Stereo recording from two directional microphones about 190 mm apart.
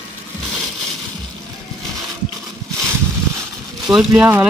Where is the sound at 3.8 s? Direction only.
5° right (ahead or behind).